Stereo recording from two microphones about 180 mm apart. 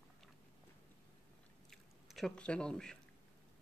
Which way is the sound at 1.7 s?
Centre (ahead or behind).